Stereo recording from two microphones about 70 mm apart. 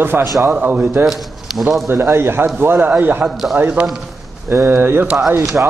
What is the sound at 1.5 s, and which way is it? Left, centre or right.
Speech, centre.